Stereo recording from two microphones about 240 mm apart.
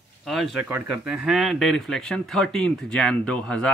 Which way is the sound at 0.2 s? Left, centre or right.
Centre.